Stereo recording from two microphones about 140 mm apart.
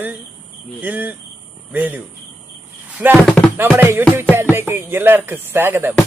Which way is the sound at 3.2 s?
5° left (ahead or behind).